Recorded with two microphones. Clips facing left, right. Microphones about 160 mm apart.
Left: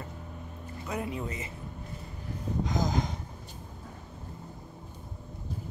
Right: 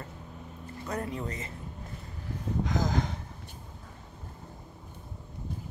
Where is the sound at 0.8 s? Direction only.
10° left (ahead or behind).